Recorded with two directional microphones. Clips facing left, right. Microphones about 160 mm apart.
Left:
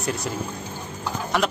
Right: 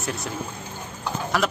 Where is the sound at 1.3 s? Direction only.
Centre (ahead or behind).